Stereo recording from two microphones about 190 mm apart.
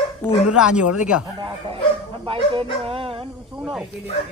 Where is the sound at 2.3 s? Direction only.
30° right (ahead or behind).